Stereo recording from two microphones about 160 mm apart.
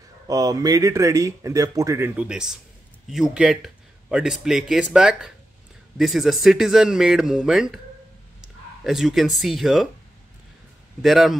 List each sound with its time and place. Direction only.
0.3 s speech: 25° right (ahead or behind); by 7.8 s 5° right (ahead or behind)
8.4 s a sound: centre (ahead or behind)
9.4 s speech: centre (ahead or behind)
11.0 s speech: centre (ahead or behind)